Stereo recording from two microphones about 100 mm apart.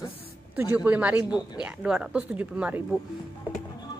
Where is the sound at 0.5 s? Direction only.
20° right (ahead or behind).